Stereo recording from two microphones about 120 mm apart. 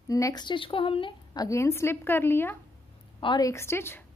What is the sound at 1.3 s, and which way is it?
A woman's voice, 30° left (ahead or behind).